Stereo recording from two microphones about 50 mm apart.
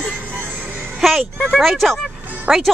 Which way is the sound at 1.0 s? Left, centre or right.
Centre.